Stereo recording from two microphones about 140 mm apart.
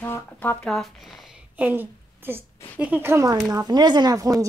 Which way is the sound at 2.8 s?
15° right (ahead or behind).